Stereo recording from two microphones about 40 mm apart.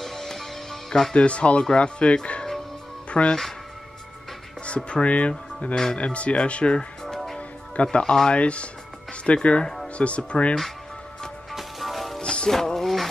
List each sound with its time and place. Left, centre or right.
0.0 s music: centre
1.1 s speech: left
4.6 s speech: left
7.3 s music: left
8.4 s speech: left
11.5 s music: centre
12.2 s music: left
12.4 s music: centre